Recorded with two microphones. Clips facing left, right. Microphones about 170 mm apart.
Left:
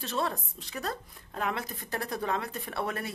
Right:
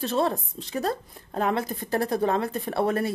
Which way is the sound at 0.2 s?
30° right (ahead or behind).